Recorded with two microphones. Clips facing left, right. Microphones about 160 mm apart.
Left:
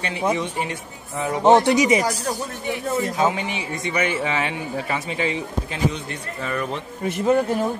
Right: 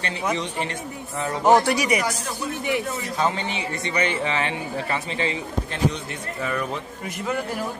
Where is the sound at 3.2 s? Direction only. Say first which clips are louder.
Left 2 dB; 10° left (ahead or behind).